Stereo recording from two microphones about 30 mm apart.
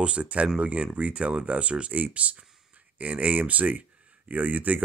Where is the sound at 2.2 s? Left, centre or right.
Right.